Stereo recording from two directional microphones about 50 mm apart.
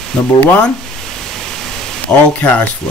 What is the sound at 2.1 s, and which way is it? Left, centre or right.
Speech, left.